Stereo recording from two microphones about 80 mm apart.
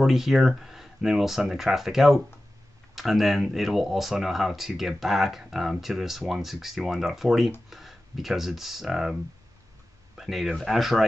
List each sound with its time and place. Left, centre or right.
0.0 s speech: centre
10.1 s speech: centre